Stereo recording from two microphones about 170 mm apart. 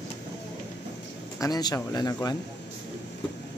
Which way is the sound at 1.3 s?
20° left (ahead or behind).